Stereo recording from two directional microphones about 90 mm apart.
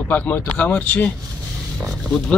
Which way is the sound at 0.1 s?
15° left (ahead or behind).